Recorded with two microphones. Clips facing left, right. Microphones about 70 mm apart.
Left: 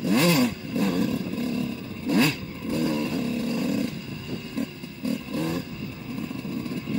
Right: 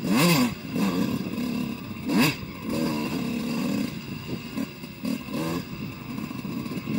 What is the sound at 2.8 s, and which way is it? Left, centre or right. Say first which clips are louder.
Vehicle: left 3 dB; centre.